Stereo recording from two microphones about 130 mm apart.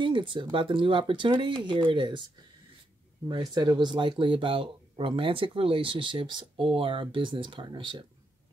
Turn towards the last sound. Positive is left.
turn(degrees=-40)  # may be behind; listen again after turning